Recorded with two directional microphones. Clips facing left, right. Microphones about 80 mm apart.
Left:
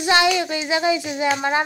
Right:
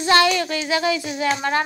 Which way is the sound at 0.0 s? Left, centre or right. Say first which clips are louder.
Right 1 dB; centre.